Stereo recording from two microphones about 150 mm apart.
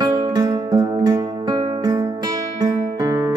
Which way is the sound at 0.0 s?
25° right (ahead or behind).